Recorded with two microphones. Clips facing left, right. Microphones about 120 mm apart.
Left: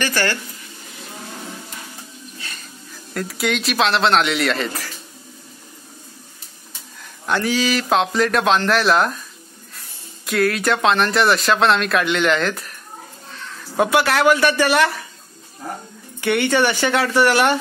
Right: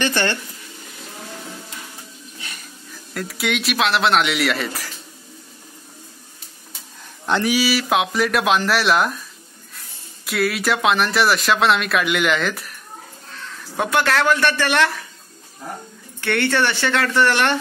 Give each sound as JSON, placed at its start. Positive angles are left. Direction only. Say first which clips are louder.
{"t": 0.0, "sound": "speech", "louder": "right 1 dB", "side_deg": -20}
{"t": 2.3, "sound": "a sound", "louder": "even", "side_deg": -15}
{"t": 3.2, "sound": "speech", "louder": "left 2 dB", "side_deg": 0}
{"t": 7.2, "sound": "speech", "louder": "right 1 dB", "side_deg": -15}
{"t": 10.2, "sound": "speech", "louder": "left 2 dB", "side_deg": -5}
{"t": 13.7, "sound": "speech", "louder": "left 2 dB", "side_deg": 5}
{"t": 16.2, "sound": "speech", "louder": "left 2 dB", "side_deg": 10}